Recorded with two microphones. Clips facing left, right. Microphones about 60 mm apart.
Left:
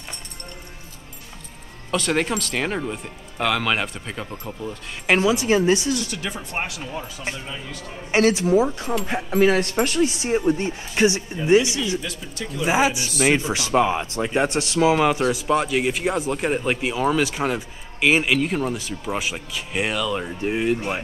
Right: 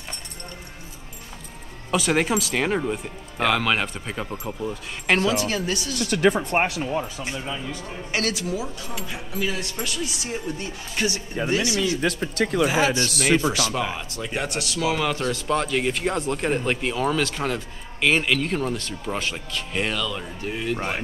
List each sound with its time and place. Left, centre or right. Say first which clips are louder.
1.9 s speech: right 1 dB; centre
5.0 s speech: left 2 dB; centre
5.9 s speech: right 8 dB; right
6.8 s speech: right 6 dB; right
7.3 s speech: right 3 dB; centre
8.1 s speech: left 9 dB; left
10.2 s speech: left 9 dB; left
12.0 s speech: right 8 dB; right
12.6 s speech: left 4 dB; centre
12.9 s speech: right 5 dB; right
13.5 s speech: left 5 dB; left; by 20.1 s centre
20.1 s speech: left 6 dB; left